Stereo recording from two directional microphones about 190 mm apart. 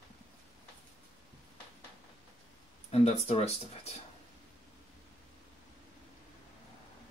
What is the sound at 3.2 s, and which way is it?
Speech, 35° left (ahead or behind).